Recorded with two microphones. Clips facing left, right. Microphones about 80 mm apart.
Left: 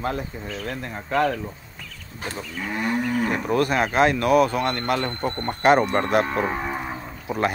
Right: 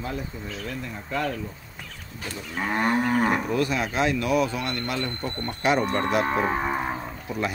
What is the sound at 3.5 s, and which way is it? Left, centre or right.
Speech, left.